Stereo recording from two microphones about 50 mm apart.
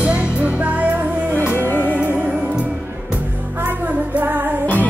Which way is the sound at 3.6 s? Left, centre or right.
Right.